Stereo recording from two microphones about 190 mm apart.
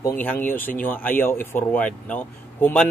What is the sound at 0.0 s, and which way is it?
Speech, 10° left (ahead or behind).